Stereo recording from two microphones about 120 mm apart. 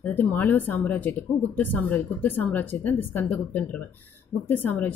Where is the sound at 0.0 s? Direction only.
15° left (ahead or behind).